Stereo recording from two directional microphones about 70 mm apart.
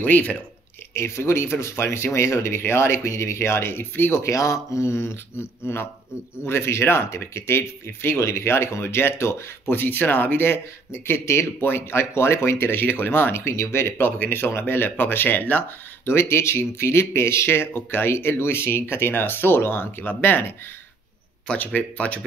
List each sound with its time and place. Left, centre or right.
0.0 s speech: left
0.9 s speech: left
4.2 s speech: left
16.1 s speech: left
21.5 s speech: left